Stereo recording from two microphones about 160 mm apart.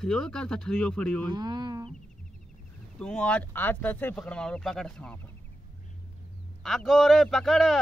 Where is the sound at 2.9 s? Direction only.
5° left (ahead or behind).